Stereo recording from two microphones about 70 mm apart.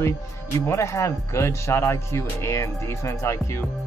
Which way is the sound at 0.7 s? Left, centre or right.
Left.